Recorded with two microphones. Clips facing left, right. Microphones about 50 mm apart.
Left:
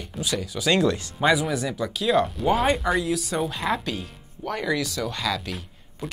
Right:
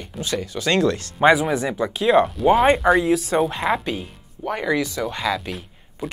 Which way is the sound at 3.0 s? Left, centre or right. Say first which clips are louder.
Right 6 dB; right.